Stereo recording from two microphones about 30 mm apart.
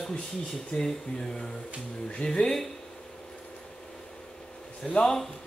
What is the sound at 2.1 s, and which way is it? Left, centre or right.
Speech, left.